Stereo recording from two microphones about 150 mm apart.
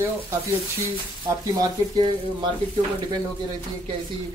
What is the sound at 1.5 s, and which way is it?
Speech, 30° right (ahead or behind).